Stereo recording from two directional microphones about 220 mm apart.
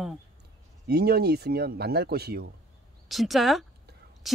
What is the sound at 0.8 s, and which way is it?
Speech, 45° right (ahead or behind).